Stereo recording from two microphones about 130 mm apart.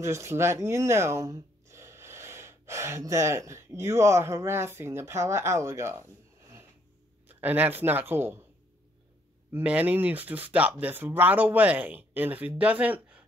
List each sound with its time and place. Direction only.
0.0 s speech: 20° right (ahead or behind)
7.3 s speech: 15° right (ahead or behind)
9.5 s speech: 10° right (ahead or behind)